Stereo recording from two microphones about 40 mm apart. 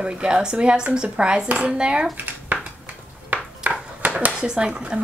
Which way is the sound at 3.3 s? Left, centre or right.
Right.